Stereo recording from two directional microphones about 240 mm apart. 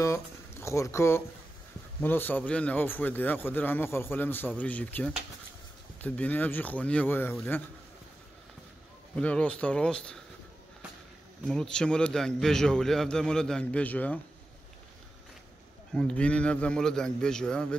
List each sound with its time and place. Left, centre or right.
0.0 s speech: centre
9.1 s speech: centre
11.4 s speech: centre
15.9 s speech: centre